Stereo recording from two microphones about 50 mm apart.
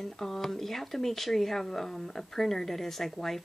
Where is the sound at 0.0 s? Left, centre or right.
Centre.